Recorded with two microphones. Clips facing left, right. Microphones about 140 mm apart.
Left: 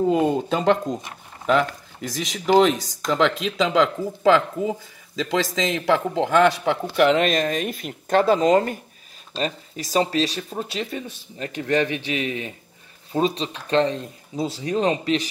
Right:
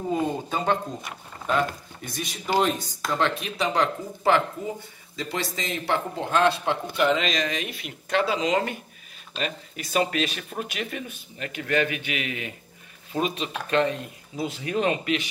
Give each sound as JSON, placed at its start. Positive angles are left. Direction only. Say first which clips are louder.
{"t": 0.1, "sound": "speech", "louder": "left 6 dB", "side_deg": 90}
{"t": 7.0, "sound": "speech", "louder": "left 6 dB", "side_deg": 60}